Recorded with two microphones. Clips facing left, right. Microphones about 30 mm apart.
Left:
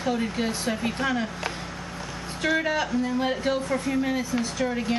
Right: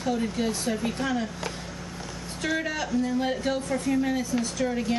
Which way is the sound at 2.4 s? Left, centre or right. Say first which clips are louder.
Left 4 dB; centre.